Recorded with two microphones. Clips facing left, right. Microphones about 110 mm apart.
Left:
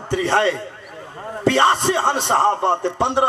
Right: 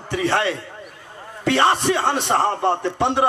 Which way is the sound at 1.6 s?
20° left (ahead or behind).